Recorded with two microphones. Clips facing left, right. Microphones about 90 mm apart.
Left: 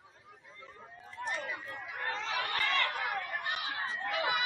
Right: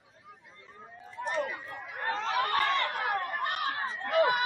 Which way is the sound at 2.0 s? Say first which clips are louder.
Right 6 dB; 40° right (ahead or behind).